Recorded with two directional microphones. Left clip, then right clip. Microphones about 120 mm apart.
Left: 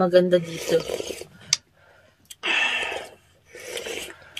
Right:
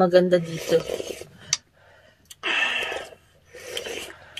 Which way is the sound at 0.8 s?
45° left (ahead or behind).